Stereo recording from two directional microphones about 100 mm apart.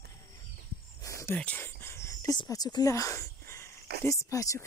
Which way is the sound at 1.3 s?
15° left (ahead or behind).